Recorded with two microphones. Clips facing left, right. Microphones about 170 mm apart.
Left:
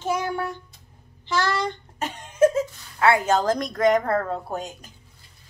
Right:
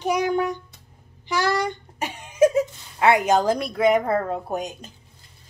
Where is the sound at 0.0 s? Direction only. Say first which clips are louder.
Right 4 dB; 15° right (ahead or behind).